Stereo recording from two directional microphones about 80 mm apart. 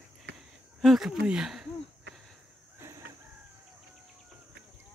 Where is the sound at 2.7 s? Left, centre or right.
Right.